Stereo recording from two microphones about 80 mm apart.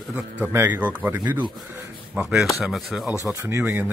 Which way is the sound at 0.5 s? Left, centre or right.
Right.